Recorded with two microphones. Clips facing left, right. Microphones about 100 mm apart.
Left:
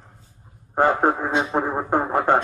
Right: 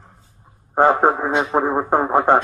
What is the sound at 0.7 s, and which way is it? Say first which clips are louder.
A man's voice: right 4 dB; 20° right (ahead or behind).